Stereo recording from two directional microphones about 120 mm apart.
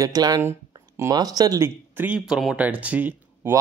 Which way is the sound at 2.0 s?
10° right (ahead or behind).